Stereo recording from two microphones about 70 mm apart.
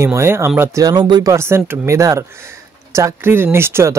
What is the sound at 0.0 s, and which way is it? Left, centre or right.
Speech, right.